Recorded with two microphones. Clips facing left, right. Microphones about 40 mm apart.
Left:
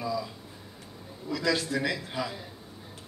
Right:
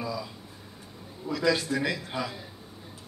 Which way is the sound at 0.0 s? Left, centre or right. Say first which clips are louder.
Left 2 dB; centre.